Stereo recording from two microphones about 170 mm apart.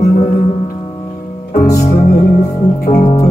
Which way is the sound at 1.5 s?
65° left (ahead or behind).